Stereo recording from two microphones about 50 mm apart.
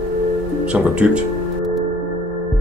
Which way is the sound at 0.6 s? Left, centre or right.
Right.